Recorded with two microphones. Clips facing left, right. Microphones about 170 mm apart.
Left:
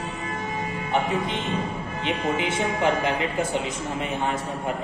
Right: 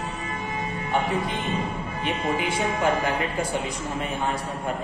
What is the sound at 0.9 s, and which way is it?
Speech, 20° left (ahead or behind).